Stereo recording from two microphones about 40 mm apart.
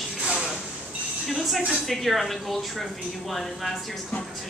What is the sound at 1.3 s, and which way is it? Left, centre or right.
Speech, centre.